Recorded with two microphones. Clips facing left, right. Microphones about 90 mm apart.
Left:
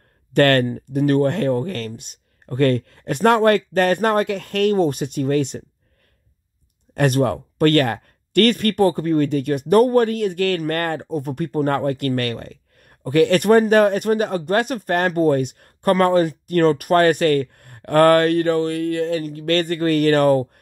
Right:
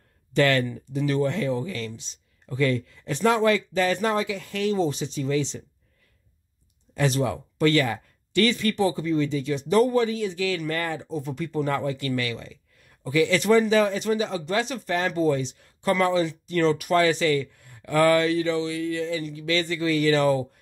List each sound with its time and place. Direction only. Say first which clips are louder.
0.3 s speech: left 6 dB; 60° left (ahead or behind)
6.9 s speech: left 6 dB; 55° left (ahead or behind)